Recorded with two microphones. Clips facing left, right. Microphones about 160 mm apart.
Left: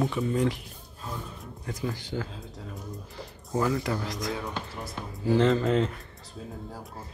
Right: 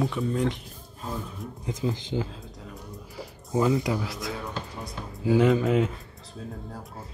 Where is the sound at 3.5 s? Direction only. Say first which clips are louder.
Right 3 dB; 15° right (ahead or behind).